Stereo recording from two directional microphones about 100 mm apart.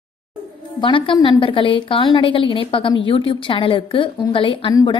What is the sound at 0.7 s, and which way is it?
A woman's voice, 55° left (ahead or behind).